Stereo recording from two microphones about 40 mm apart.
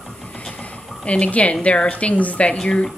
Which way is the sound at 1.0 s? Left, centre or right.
Left.